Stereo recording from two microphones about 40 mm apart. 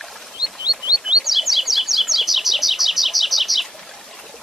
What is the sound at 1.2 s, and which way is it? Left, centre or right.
Bird, centre.